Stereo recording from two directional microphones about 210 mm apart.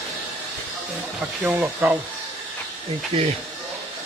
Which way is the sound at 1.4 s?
5° right (ahead or behind).